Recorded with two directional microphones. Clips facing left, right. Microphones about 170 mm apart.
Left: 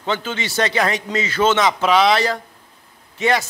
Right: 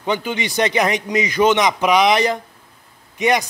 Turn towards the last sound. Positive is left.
turn(degrees=-15)  # may be behind; listen again after turning